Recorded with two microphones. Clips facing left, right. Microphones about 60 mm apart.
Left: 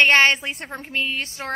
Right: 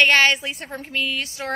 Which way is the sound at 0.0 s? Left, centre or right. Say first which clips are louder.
Left 1 dB; left.